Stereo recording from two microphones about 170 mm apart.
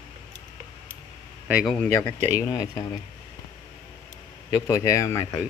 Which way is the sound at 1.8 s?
15° left (ahead or behind).